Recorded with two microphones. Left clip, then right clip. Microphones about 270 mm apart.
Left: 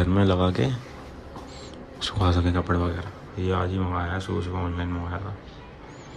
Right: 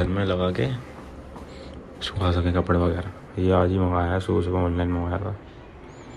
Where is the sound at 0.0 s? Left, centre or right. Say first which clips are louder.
Left 1 dB; centre.